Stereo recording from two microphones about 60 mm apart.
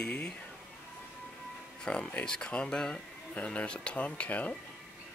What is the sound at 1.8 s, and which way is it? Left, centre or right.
Speech, centre.